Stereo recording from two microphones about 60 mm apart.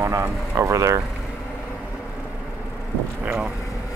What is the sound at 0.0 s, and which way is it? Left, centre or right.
Speech, right.